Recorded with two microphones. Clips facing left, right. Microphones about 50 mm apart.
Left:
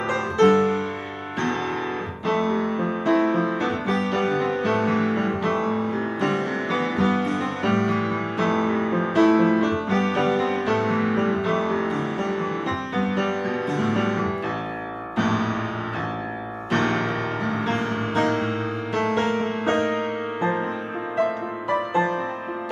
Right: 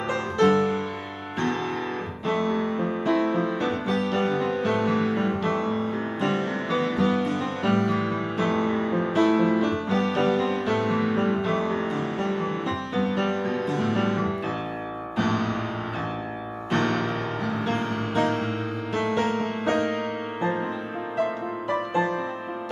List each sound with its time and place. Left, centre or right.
0.1 s music: left
2.2 s music: left
16.7 s music: left